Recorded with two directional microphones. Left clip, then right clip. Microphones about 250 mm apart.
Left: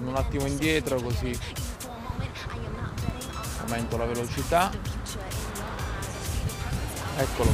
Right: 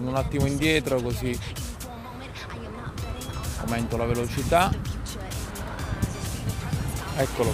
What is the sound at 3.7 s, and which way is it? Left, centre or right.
Speech, right.